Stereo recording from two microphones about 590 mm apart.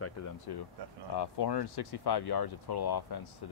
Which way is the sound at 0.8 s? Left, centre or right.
Right.